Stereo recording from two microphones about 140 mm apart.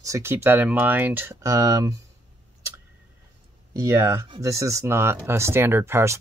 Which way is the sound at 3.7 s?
20° right (ahead or behind).